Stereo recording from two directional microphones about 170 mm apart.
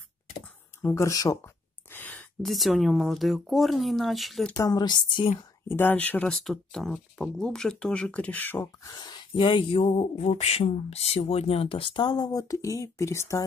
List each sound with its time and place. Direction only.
0.8 s a woman's voice: 20° left (ahead or behind); by 4.6 s centre (ahead or behind)
4.6 s a woman's voice: 25° left (ahead or behind)
5.7 s speech: 10° left (ahead or behind)
8.9 s speech: 25° left (ahead or behind)